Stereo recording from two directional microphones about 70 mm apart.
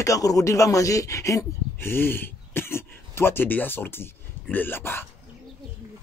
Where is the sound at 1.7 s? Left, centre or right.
Left.